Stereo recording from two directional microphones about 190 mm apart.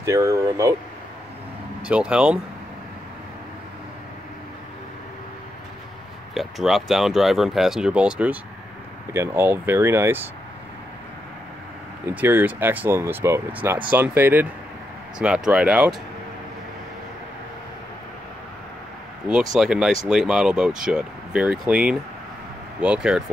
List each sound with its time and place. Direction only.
0.0 s speech: 15° right (ahead or behind)
1.9 s speech: 5° right (ahead or behind)
6.3 s speech: centre (ahead or behind)
12.1 s speech: 10° right (ahead or behind)
19.2 s speech: 5° right (ahead or behind)